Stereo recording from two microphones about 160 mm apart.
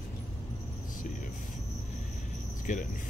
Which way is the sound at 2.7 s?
50° left (ahead or behind).